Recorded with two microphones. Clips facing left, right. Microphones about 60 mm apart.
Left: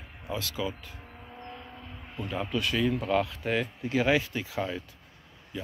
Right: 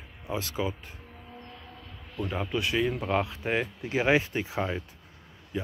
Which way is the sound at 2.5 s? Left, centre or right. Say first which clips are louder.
Even; right.